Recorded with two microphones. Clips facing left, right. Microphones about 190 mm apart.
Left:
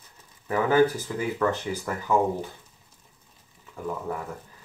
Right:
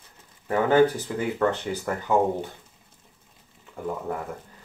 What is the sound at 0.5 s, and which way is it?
Speech, 30° right (ahead or behind).